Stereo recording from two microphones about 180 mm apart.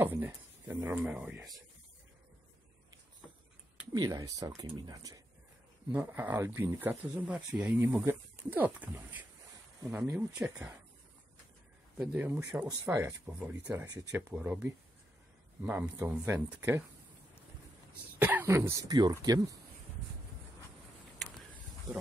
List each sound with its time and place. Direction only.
0.0 s speech: 10° right (ahead or behind)
3.9 s speech: 20° right (ahead or behind); by 10.7 s 5° right (ahead or behind)
12.0 s speech: 5° right (ahead or behind)
18.2 s speech: 10° right (ahead or behind)